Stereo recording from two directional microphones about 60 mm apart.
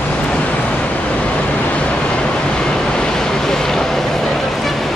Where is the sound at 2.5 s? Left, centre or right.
Centre.